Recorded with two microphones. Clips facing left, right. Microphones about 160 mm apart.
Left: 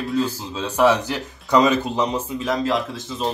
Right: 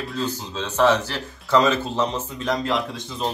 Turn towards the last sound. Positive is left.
turn(degrees=0)  # may be behind; listen again after turning